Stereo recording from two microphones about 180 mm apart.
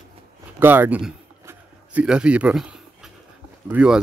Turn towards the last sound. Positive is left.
turn(degrees=-5)  # may be behind; listen again after turning